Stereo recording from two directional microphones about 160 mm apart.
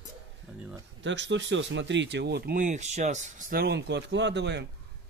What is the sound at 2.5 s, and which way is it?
Speech, 50° right (ahead or behind).